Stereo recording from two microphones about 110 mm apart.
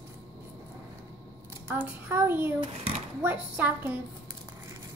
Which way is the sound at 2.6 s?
60° right (ahead or behind).